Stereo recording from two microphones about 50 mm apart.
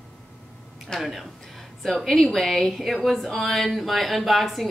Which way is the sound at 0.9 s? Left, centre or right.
Centre.